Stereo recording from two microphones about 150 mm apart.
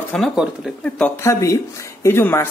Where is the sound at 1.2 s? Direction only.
20° left (ahead or behind).